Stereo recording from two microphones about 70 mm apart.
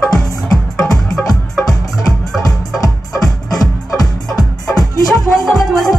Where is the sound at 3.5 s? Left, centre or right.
Left.